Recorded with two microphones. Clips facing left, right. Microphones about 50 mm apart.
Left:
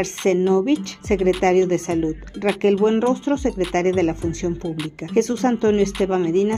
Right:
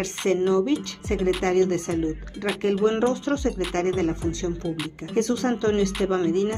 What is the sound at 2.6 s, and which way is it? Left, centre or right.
A woman's voice, left.